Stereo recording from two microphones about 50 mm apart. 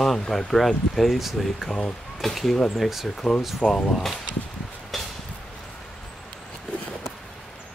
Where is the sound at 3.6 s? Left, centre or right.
Centre.